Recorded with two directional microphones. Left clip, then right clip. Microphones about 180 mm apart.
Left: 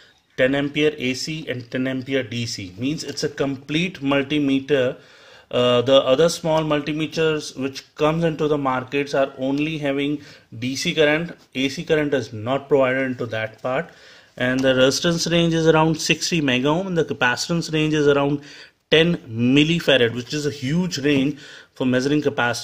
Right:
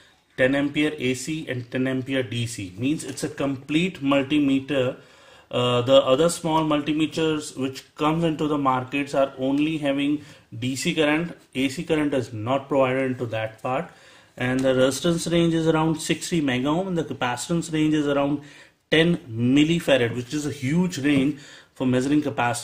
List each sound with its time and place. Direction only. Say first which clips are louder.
0.4 s speech: left 2 dB; 40° left (ahead or behind)